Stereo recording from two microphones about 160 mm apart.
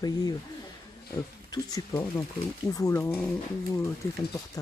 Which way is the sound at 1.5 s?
20° left (ahead or behind).